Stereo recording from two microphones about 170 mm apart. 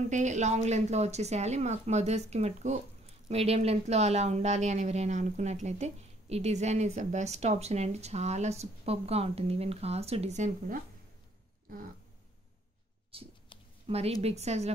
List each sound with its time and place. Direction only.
0.1 s a woman's voice: 45° right (ahead or behind)
13.1 s a woman's voice: 35° right (ahead or behind)